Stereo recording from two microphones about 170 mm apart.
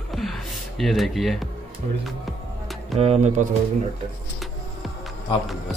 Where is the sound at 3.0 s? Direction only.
40° right (ahead or behind).